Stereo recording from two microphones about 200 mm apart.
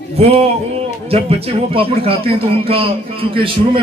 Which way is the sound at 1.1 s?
30° right (ahead or behind).